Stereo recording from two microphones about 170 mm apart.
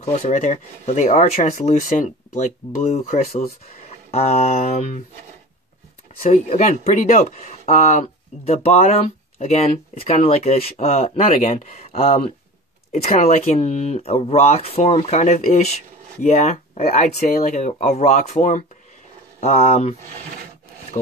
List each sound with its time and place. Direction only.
0.0 s speech: 40° left (ahead or behind)
6.3 s speech: 40° left (ahead or behind)
11.3 s speech: 50° left (ahead or behind)